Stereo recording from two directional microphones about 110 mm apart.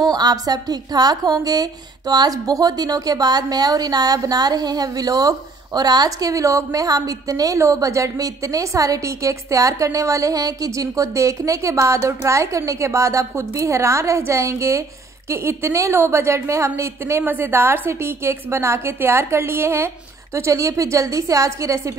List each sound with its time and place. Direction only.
0.1 s a woman's voice: 35° right (ahead or behind)